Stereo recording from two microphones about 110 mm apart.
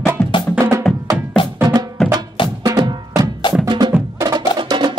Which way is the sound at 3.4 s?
45° left (ahead or behind).